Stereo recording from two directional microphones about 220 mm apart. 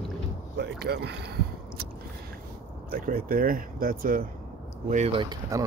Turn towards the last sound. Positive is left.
turn(degrees=-20)  # may be behind; listen again after turning